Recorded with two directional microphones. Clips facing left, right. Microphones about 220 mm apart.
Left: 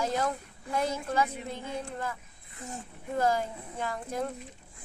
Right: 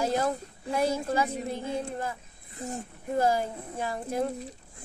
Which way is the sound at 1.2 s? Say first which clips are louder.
Right 5 dB; 35° right (ahead or behind).